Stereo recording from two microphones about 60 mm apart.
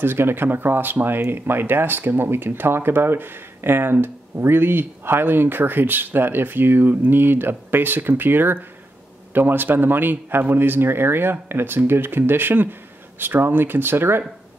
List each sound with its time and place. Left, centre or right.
0.0 s speech: right